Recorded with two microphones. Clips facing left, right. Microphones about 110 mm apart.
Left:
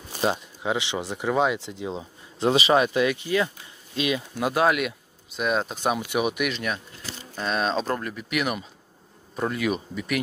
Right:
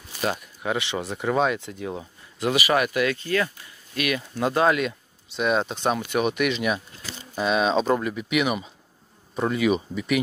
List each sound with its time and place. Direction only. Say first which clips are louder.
0.1 s speech: left 2 dB; 20° left (ahead or behind)
4.4 s speech: right 2 dB; 10° left (ahead or behind)